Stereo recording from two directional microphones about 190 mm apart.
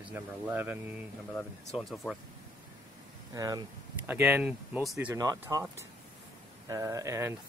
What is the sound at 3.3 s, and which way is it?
Speech, 20° right (ahead or behind).